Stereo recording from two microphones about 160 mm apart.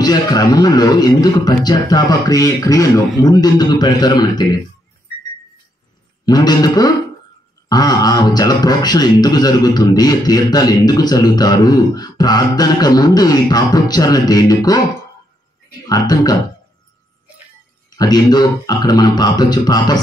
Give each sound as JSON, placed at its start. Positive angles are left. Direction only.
{"t": 0.0, "sound": "a man's voice", "side_deg": 25}
{"t": 6.2, "sound": "a man's voice", "side_deg": 25}
{"t": 15.9, "sound": "a man's voice", "side_deg": 25}
{"t": 17.8, "sound": "a man's voice", "side_deg": 25}